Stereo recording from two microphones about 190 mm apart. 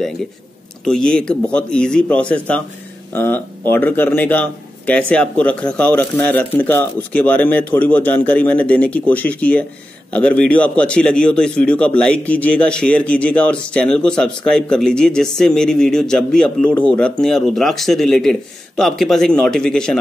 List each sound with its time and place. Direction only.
0.8 s a man's voice: 5° left (ahead or behind)